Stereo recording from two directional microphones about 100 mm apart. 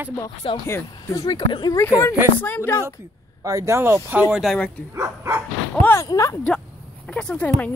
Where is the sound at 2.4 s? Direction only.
20° left (ahead or behind).